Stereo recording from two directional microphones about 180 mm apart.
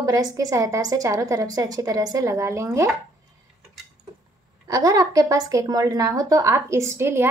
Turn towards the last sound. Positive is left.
turn(degrees=-15)  # may be behind; listen again after turning